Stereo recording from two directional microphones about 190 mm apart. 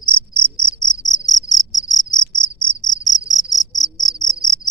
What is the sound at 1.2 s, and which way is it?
Insect, centre (ahead or behind).